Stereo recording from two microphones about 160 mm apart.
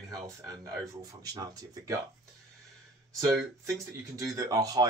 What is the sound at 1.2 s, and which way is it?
Speech, 25° right (ahead or behind).